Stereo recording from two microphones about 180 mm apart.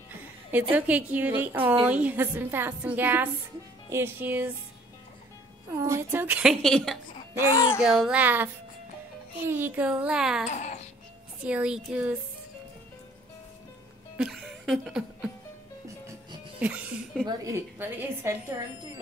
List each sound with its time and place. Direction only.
0.1 s a woman's voice: 10° right (ahead or behind)
5.8 s a woman's voice: 15° right (ahead or behind)
6.6 s speech: centre (ahead or behind)
7.5 s child singing: 20° left (ahead or behind)
7.8 s a woman's voice: 5° right (ahead or behind)
9.5 s a woman's voice: 10° right (ahead or behind)
10.5 s babbling: 40° left (ahead or behind)
11.4 s speech: 5° right (ahead or behind)
14.1 s music: centre (ahead or behind)
16.5 s a woman's voice: 10° right (ahead or behind)
17.3 s a woman's voice: 20° right (ahead or behind)